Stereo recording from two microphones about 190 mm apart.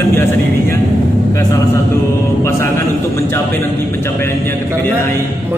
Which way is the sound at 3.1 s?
15° left (ahead or behind).